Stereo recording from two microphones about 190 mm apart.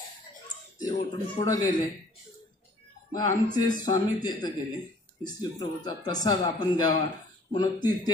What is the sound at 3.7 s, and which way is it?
Speech, 20° left (ahead or behind).